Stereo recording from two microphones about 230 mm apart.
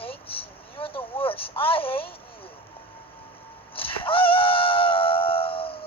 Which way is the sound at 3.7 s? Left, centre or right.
Left.